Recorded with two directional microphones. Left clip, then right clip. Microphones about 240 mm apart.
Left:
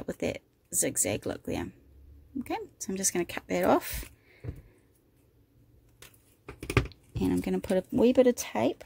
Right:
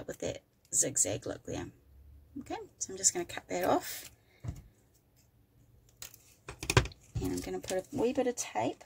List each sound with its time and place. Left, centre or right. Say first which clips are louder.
0.0 s speech: left 5 dB; left
6.9 s speech: left 7 dB; left